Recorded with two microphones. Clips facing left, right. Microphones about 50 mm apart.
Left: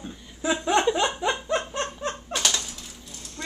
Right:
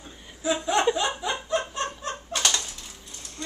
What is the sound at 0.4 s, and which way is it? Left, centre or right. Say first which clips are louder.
Chuckle: left 1 dB; left.